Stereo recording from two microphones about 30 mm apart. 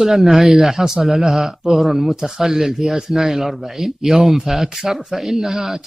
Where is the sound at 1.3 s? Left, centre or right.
Centre.